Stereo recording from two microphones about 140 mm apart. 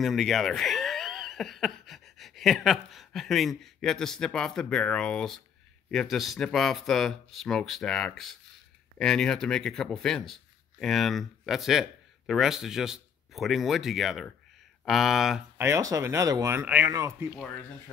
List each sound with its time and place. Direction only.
0.0 s speech: centre (ahead or behind)
15.5 s speech: 20° right (ahead or behind)